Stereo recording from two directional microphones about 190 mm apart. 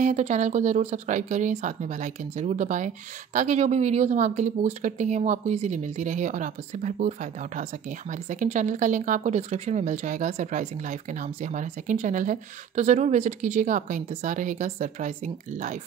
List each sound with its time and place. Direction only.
0.0 s speech: 40° right (ahead or behind)